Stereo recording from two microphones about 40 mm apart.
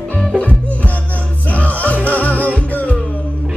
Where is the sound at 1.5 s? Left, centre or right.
Left.